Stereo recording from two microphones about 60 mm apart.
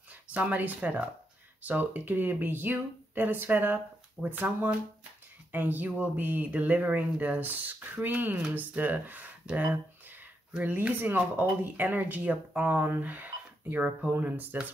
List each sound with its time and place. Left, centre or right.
0.1 s speech: right